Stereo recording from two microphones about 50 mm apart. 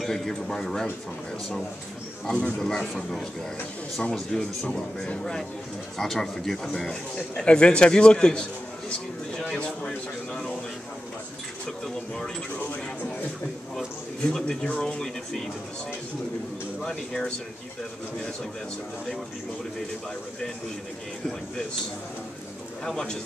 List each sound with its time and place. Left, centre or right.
0.0 s speech: centre
2.3 s speech: centre
5.9 s speech: centre
7.4 s a man's voice: centre
14.3 s speech: centre
16.8 s speech: centre
22.8 s speech: centre